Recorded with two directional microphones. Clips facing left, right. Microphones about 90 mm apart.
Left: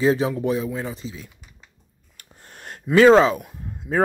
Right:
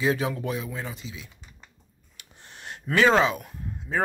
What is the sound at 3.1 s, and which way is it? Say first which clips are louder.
Speech: left 6 dB; 30° left (ahead or behind).